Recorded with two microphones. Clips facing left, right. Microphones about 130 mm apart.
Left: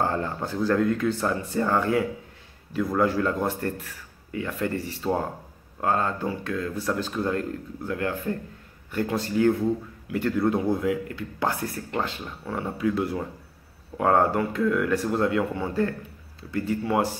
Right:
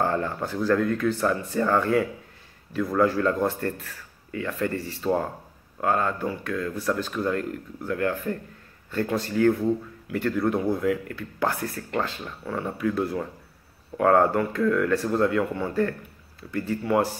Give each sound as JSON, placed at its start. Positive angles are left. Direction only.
{"t": 0.0, "sound": "speech", "side_deg": 20}